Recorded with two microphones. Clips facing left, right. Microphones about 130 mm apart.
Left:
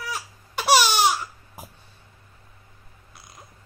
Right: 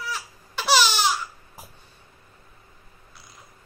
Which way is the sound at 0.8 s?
50° left (ahead or behind).